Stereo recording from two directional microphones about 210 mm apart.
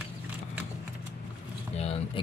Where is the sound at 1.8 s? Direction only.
30° left (ahead or behind).